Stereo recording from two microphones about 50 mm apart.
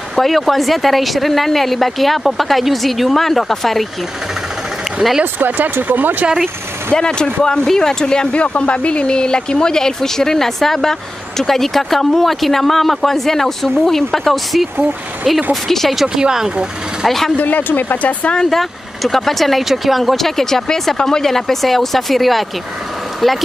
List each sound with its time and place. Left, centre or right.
0.1 s speech: centre
5.2 s speech: right
6.9 s speech: centre
15.7 s speech: centre
16.2 s speech: centre
17.4 s speech: left
18.5 s speech: centre